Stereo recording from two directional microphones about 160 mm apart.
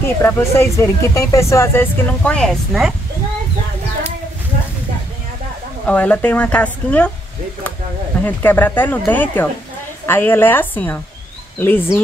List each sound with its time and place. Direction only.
0.2 s speech: 15° left (ahead or behind); by 2.9 s centre (ahead or behind)
5.9 s speech: 10° left (ahead or behind)
8.3 s speech: 10° left (ahead or behind)